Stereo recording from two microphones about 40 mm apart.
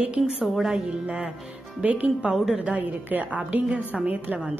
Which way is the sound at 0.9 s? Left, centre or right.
Right.